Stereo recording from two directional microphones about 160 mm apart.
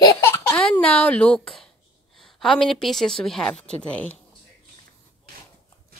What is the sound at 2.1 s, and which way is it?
A woman's voice, centre (ahead or behind).